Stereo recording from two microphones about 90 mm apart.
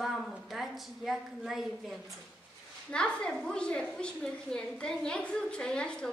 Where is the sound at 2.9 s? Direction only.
10° left (ahead or behind).